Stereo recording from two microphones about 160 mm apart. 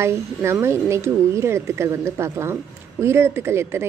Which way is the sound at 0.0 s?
15° right (ahead or behind).